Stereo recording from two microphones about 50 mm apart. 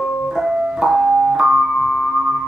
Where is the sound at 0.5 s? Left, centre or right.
Right.